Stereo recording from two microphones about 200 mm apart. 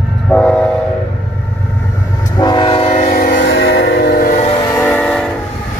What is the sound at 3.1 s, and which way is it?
Train, 45° left (ahead or behind).